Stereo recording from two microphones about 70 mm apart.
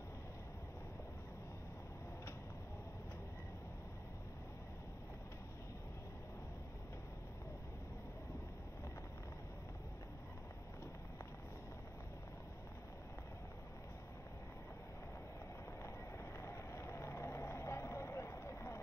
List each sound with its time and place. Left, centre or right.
16.3 s vehicle: left